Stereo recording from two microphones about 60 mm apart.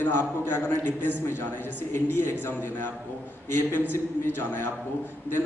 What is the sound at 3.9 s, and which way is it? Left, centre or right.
Speech, left.